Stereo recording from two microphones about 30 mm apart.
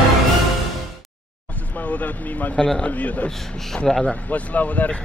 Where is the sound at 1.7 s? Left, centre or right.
Left.